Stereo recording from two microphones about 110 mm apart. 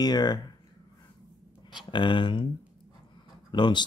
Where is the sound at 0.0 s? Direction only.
40° left (ahead or behind).